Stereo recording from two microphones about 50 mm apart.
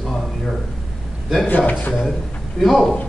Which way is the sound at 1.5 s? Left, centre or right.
Left.